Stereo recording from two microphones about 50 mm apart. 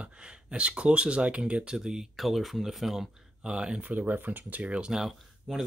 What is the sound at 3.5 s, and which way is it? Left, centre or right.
Speech, centre.